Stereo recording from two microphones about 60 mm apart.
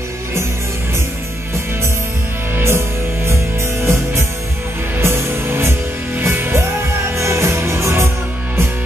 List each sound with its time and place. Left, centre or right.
2.5 s music: right
3.8 s music: right